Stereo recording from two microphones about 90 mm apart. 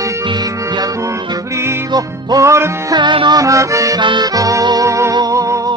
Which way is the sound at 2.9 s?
60° right (ahead or behind).